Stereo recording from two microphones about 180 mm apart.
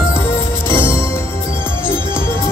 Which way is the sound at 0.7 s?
15° left (ahead or behind).